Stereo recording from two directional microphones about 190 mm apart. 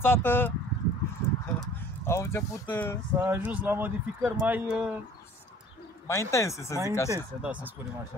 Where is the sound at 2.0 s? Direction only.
15° left (ahead or behind).